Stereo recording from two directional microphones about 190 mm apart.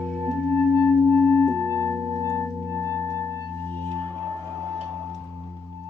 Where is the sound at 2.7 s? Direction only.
15° left (ahead or behind).